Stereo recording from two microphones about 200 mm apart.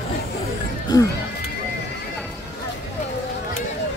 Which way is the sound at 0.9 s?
20° left (ahead or behind).